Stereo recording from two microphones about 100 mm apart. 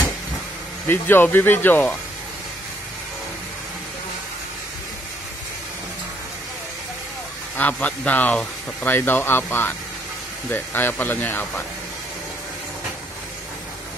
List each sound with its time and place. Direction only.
0.8 s speech: 20° left (ahead or behind)
7.5 s speech: 15° left (ahead or behind)